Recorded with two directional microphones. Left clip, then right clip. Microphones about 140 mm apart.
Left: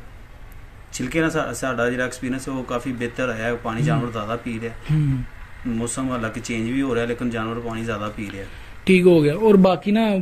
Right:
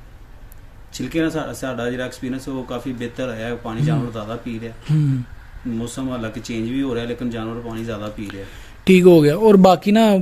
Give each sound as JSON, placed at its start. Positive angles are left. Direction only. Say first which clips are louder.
{"t": 0.9, "sound": "speech", "louder": "even", "side_deg": -15}
{"t": 1.8, "sound": "speech", "louder": "left 4 dB", "side_deg": 0}
{"t": 2.0, "sound": "speech", "louder": "left 1 dB", "side_deg": -15}
{"t": 5.8, "sound": "speech", "louder": "left 2 dB", "side_deg": -10}
{"t": 8.8, "sound": "speech", "louder": "right 4 dB", "side_deg": -35}